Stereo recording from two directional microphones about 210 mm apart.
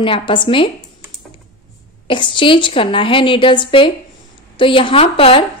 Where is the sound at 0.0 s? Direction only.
25° left (ahead or behind).